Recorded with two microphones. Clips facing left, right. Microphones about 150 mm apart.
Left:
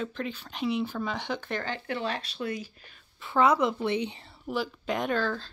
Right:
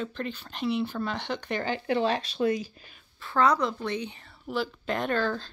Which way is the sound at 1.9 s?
25° right (ahead or behind).